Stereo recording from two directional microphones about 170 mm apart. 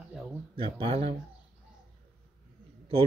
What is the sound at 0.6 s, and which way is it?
Speech, 30° right (ahead or behind).